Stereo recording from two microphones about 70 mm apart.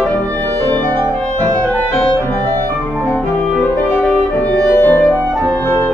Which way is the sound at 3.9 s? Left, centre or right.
Left.